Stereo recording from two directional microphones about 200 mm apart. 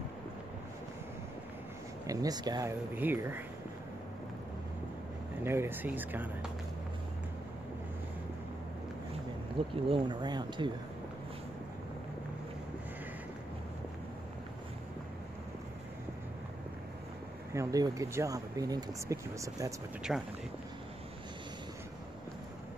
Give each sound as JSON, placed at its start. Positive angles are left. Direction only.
{"t": 2.0, "sound": "speech", "side_deg": -20}
{"t": 5.4, "sound": "speech", "side_deg": -10}
{"t": 9.8, "sound": "speech", "side_deg": -25}
{"t": 17.6, "sound": "speech", "side_deg": -15}
{"t": 20.1, "sound": "speech", "side_deg": 0}